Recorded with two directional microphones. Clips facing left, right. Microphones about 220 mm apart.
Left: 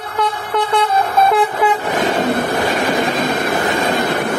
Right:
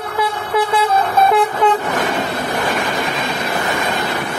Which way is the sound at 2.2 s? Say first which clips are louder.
Left 4 dB; 50° left (ahead or behind).